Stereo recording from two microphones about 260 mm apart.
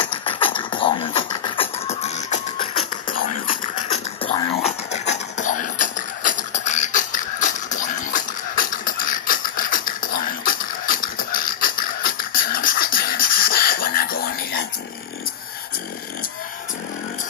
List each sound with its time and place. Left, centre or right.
0.0 s beatboxing: centre
4.2 s beatboxing: centre
6.2 s a sound: left
12.9 s beatboxing: left